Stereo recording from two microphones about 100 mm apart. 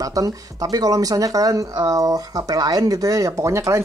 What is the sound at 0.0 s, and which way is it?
Speech, 35° right (ahead or behind).